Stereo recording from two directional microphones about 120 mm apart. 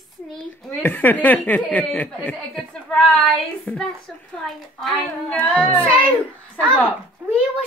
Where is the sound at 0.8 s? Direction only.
15° left (ahead or behind).